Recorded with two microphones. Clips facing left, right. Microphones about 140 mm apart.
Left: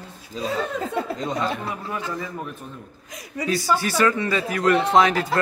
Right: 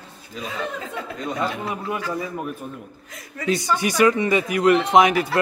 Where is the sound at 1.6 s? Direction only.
20° right (ahead or behind).